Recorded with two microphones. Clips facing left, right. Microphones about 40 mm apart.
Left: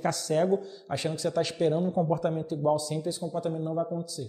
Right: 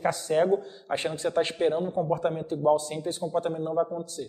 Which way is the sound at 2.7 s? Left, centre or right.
Right.